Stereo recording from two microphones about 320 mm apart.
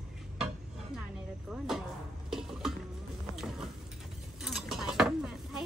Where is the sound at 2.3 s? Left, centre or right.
Centre.